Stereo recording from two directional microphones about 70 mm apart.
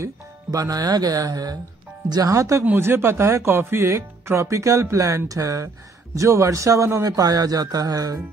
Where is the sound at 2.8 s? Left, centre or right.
Right.